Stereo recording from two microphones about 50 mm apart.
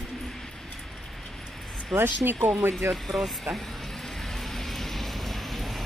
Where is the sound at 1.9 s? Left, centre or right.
Right.